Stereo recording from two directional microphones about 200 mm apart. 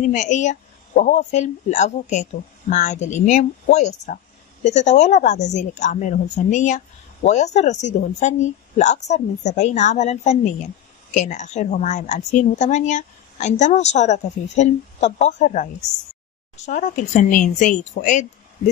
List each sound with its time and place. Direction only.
0.1 s a woman's voice: 35° left (ahead or behind)